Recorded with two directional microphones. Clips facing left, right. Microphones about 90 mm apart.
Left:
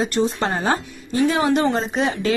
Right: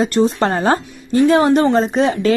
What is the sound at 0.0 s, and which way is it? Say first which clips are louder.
A woman's voice: right 5 dB; 45° right (ahead or behind).